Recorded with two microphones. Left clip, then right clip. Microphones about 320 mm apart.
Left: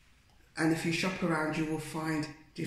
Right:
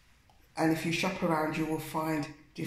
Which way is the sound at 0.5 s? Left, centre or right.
Centre.